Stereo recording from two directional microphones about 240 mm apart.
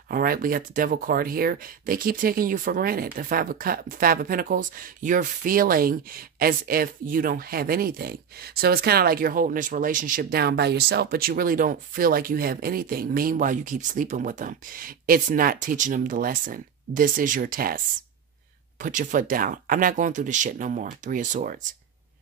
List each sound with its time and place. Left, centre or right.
0.1 s speech: right